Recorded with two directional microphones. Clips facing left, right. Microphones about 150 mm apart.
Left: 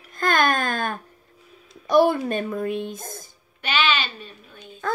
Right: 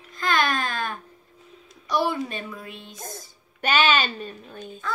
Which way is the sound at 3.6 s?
45° right (ahead or behind).